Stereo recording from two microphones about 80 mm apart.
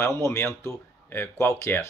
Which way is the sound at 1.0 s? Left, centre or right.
Left.